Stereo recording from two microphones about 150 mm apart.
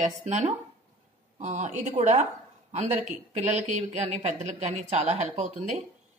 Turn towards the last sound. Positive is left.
turn(degrees=-50)  # may be behind; listen again after turning